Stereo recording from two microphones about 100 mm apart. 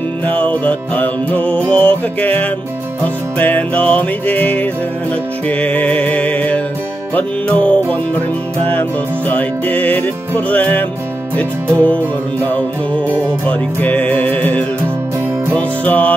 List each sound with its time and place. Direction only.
0.3 s music: 15° left (ahead or behind)
9.3 s music: 15° left (ahead or behind)
13.5 s music: 15° left (ahead or behind)